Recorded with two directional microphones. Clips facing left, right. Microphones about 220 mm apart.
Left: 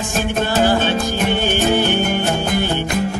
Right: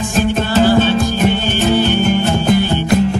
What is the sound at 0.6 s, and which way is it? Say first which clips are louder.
Music: right 5 dB; 50° left (ahead or behind).